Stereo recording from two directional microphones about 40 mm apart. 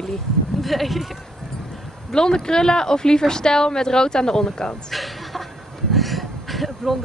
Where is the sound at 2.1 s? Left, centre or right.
Centre.